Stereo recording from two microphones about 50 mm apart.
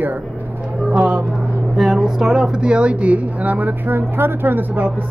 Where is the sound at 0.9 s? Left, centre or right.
Right.